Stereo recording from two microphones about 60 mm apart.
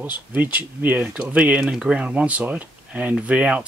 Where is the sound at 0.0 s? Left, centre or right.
Right.